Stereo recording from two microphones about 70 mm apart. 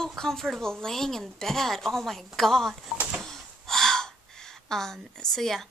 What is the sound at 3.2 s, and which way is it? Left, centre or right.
Gasp, centre.